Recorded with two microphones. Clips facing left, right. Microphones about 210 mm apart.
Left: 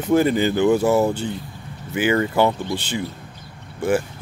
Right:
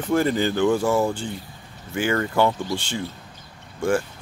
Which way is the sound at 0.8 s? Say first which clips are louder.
Left 3 dB; 20° left (ahead or behind).